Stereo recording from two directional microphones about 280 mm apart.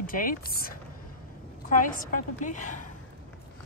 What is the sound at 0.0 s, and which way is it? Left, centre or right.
Speech, left.